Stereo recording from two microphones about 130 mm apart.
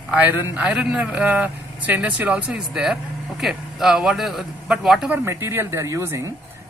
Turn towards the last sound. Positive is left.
turn(degrees=-20)  # may be behind; listen again after turning